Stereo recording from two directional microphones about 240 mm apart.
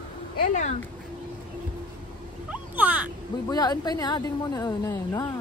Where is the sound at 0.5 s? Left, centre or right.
Left.